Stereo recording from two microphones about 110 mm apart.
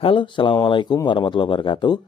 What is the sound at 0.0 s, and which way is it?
A man's voice, 50° left (ahead or behind).